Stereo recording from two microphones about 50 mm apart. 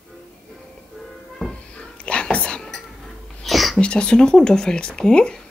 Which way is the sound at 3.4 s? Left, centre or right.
Centre.